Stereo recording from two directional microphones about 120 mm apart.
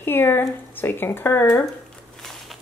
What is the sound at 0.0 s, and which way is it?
Speech, 20° left (ahead or behind).